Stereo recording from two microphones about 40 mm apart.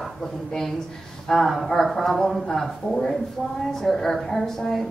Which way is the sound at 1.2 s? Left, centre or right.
Centre.